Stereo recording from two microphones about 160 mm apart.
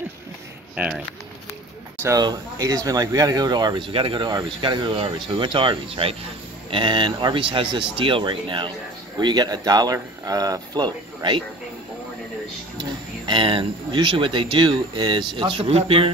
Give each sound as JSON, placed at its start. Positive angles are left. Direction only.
{"t": 0.7, "sound": "speech", "side_deg": -5}
{"t": 2.0, "sound": "speech", "side_deg": -25}
{"t": 13.3, "sound": "speech", "side_deg": -30}